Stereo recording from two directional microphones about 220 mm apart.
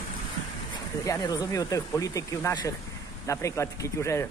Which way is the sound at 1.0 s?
15° left (ahead or behind).